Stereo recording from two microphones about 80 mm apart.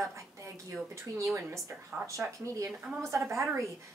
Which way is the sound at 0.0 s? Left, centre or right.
Right.